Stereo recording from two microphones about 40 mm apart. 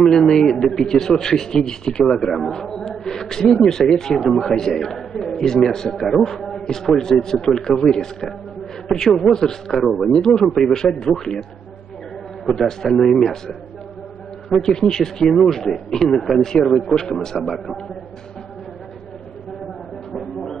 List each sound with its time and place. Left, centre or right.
0.0 s a man's voice: centre
2.2 s a man's voice: centre
5.9 s a man's voice: centre
9.7 s a man's voice: centre
10.1 s a man's voice: centre
13.0 s a man's voice: centre
16.9 s a man's voice: centre
20.1 s a sound: centre